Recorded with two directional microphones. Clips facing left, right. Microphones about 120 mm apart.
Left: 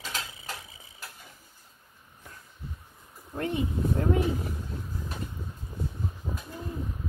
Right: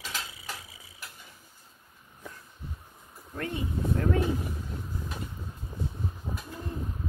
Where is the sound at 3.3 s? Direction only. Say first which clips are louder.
Left 3 dB; 25° left (ahead or behind).